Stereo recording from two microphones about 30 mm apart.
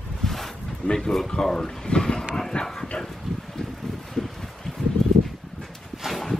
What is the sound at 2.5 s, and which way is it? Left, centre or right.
Speech, left.